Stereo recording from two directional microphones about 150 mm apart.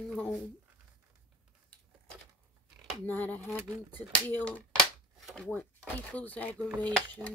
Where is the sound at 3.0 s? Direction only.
10° left (ahead or behind).